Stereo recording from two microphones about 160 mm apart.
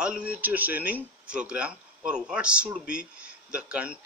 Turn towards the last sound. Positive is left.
turn(degrees=-5)  # may be behind; listen again after turning